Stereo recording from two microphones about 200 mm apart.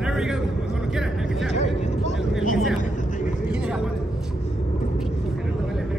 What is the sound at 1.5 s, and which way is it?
Speech, 35° left (ahead or behind).